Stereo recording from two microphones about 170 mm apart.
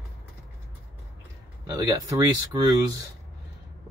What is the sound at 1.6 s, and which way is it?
Speech, 20° right (ahead or behind).